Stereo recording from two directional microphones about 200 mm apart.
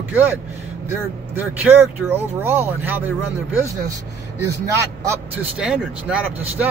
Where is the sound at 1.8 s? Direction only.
10° right (ahead or behind).